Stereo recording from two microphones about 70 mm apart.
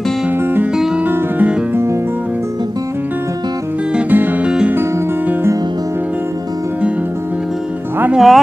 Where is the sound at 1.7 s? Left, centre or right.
Right.